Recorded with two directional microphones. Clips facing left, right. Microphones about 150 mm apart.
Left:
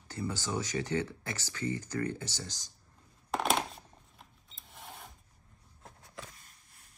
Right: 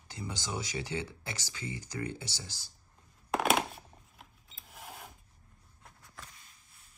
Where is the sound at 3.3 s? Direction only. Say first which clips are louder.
Right 2 dB; 5° right (ahead or behind).